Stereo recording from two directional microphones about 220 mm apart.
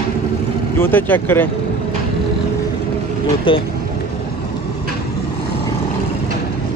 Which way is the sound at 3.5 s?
25° left (ahead or behind).